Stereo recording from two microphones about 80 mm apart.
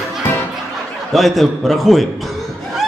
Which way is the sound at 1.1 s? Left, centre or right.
Centre.